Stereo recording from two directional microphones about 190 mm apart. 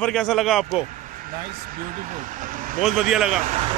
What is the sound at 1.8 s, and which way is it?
Speech, 45° right (ahead or behind).